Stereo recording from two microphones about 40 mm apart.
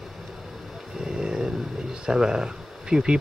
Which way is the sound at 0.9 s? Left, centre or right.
Centre.